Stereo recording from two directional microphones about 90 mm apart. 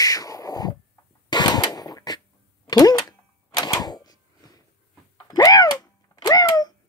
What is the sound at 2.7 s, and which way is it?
Typewriter, 45° left (ahead or behind).